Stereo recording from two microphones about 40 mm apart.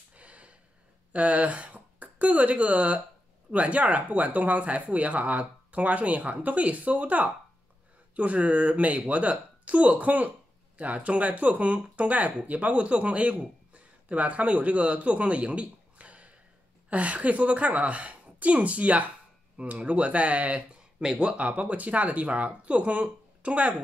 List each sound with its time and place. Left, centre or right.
0.1 s gasp: right
1.1 s a man's voice: right
21.0 s speech: right